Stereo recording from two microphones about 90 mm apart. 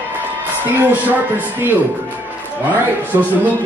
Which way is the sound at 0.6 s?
20° right (ahead or behind).